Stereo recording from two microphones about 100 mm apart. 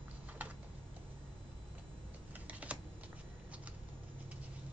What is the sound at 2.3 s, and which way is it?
Typing, 15° right (ahead or behind).